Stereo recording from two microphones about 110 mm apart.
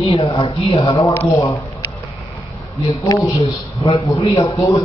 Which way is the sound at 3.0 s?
35° left (ahead or behind).